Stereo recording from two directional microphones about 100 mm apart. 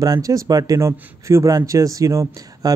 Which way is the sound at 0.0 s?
35° right (ahead or behind).